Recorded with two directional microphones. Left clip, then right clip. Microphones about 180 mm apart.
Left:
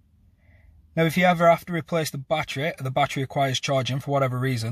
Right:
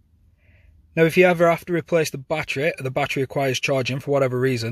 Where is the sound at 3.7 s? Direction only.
15° right (ahead or behind).